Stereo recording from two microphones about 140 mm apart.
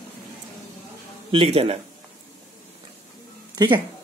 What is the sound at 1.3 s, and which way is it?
Speech, 45° right (ahead or behind).